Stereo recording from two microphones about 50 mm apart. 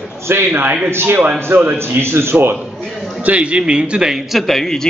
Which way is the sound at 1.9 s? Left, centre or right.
Right.